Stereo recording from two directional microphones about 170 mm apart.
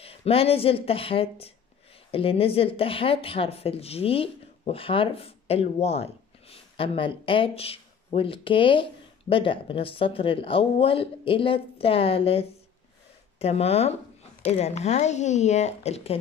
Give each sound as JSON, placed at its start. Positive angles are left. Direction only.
{"t": 0.0, "sound": "speech", "side_deg": 35}